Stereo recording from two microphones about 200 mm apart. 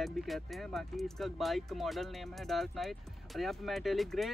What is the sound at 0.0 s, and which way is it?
Speech, centre (ahead or behind).